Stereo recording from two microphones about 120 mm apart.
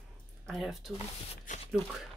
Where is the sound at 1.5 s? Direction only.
90° left.